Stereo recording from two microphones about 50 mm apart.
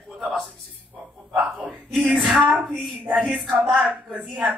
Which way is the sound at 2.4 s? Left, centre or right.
Right.